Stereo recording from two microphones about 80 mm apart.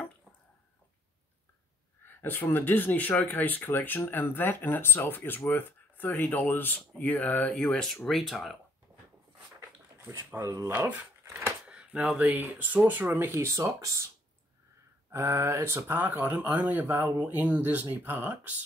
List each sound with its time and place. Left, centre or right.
2.0 s speech: left; by 8.4 s centre
9.9 s speech: right